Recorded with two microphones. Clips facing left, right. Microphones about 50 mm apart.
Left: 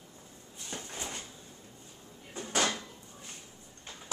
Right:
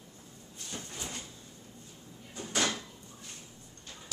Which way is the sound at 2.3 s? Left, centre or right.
Centre.